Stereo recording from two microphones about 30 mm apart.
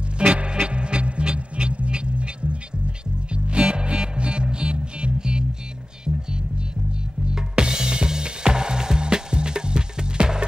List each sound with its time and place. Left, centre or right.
0.2 s music: right
3.7 s music: right
7.3 s music: right